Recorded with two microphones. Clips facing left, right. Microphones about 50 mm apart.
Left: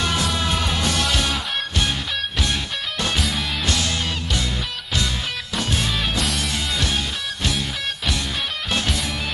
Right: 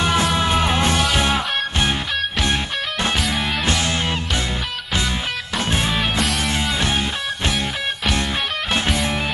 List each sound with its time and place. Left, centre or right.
0.0 s music: right
5.6 s music: right
8.7 s music: right